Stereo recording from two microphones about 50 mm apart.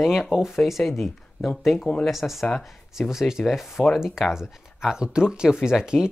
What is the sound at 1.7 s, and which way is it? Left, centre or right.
Speech, centre.